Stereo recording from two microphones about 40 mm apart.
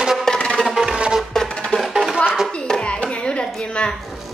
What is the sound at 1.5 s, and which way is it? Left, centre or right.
Music, centre.